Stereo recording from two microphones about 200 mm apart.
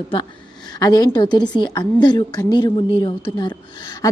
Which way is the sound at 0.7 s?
20° left (ahead or behind).